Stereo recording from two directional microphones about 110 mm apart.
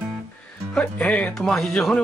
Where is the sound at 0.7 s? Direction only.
10° left (ahead or behind).